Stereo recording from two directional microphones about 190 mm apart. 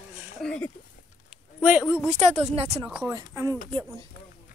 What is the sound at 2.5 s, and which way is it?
Speech, 30° right (ahead or behind).